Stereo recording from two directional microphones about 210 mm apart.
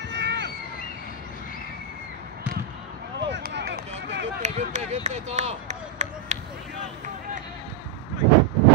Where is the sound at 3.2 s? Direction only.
55° right (ahead or behind).